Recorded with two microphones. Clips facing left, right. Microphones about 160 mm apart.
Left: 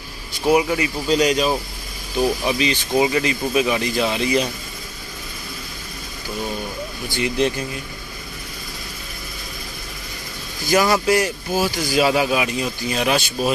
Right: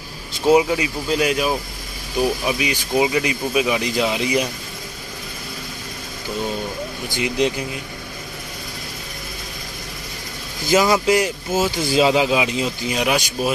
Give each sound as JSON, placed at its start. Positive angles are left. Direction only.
{"t": 0.5, "sound": "speech", "side_deg": -20}
{"t": 1.0, "sound": "speech", "side_deg": -5}
{"t": 7.1, "sound": "speech", "side_deg": -15}
{"t": 10.7, "sound": "speech", "side_deg": -20}